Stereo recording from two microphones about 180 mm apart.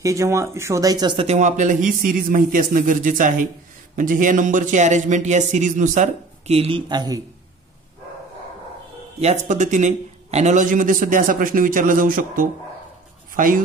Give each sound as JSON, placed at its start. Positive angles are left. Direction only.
{"t": 0.0, "sound": "speech", "side_deg": -15}
{"t": 1.2, "sound": "a man's voice", "side_deg": -40}
{"t": 9.2, "sound": "a man's voice", "side_deg": -40}